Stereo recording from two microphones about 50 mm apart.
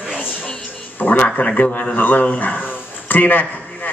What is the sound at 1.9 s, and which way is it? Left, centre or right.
A man's voice, left.